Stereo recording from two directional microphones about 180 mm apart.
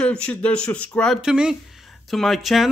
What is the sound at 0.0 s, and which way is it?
Speech, 5° left (ahead or behind).